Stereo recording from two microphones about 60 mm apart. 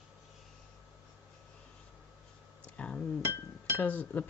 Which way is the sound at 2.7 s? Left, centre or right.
Centre.